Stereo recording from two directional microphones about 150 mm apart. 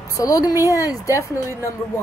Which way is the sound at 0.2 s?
25° left (ahead or behind).